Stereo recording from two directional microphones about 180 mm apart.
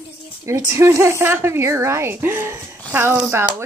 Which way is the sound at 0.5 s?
15° right (ahead or behind).